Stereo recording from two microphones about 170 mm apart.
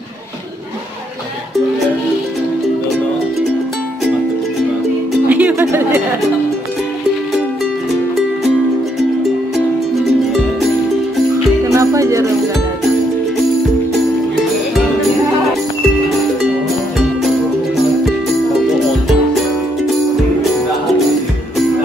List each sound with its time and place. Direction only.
5.3 s music: 10° right (ahead or behind)
11.7 s music: 20° right (ahead or behind)